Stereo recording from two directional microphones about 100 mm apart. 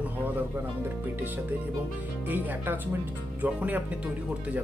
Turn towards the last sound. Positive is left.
turn(degrees=-15)  # may be behind; listen again after turning